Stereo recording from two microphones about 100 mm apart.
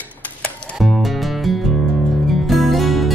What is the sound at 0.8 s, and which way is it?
Music, centre (ahead or behind).